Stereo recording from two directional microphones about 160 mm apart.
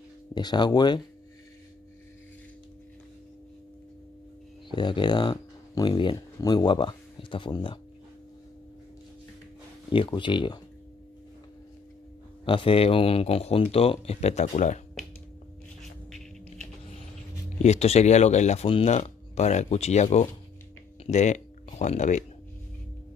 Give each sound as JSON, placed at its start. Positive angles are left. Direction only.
{"t": 0.3, "sound": "speech", "side_deg": 25}
{"t": 4.6, "sound": "speech", "side_deg": 30}
{"t": 9.8, "sound": "speech", "side_deg": 30}
{"t": 12.4, "sound": "speech", "side_deg": 35}
{"t": 17.6, "sound": "speech", "side_deg": 40}